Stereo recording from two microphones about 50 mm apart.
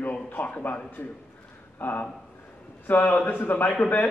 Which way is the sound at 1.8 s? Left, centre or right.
Left.